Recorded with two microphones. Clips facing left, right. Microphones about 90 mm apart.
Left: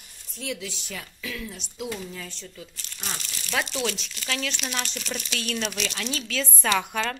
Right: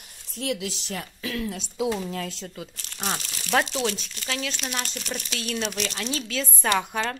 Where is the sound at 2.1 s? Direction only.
85° right.